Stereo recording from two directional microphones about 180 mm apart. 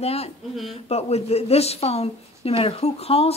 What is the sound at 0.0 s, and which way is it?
Speech, 35° left (ahead or behind).